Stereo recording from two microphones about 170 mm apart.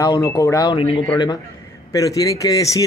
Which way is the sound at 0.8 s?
30° left (ahead or behind).